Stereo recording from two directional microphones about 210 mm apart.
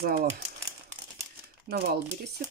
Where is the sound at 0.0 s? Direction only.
45° right (ahead or behind).